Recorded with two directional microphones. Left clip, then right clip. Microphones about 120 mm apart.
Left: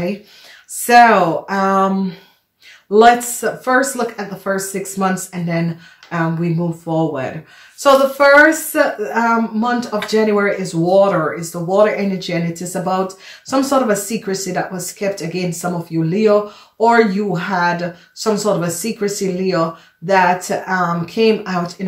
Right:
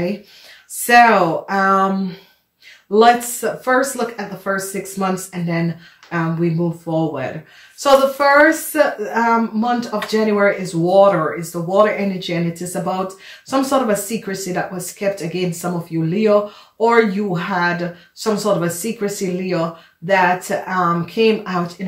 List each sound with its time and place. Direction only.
0.8 s speech: 30° left (ahead or behind)